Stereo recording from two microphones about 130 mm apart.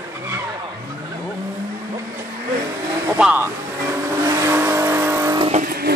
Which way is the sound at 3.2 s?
5° right (ahead or behind).